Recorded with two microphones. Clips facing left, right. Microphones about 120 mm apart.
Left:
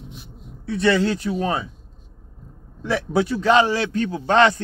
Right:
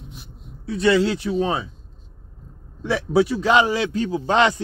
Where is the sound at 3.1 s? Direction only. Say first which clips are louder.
Even; 15° right (ahead or behind).